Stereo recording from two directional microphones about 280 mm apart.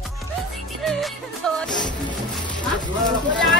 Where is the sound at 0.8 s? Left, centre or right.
Centre.